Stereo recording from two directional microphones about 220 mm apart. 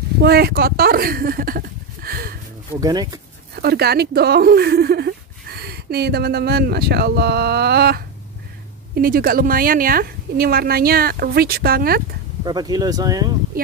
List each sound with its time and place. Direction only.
0.2 s speech: 45° right (ahead or behind)
2.7 s speech: 15° right (ahead or behind)
3.5 s speech: 45° right (ahead or behind)
12.4 s speech: 20° right (ahead or behind)